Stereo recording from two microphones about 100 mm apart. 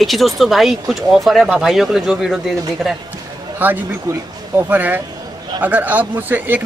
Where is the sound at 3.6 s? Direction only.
20° right (ahead or behind).